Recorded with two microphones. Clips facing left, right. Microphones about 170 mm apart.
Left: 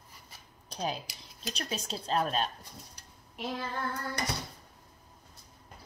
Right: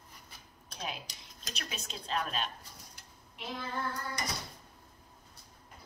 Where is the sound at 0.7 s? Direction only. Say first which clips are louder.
Left 7 dB; 35° left (ahead or behind).